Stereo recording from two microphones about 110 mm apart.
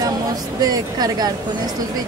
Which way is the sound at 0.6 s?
35° right (ahead or behind).